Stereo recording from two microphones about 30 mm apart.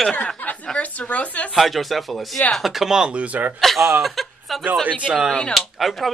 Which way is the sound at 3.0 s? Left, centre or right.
Right.